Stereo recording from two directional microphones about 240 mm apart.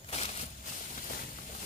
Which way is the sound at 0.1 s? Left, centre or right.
Left.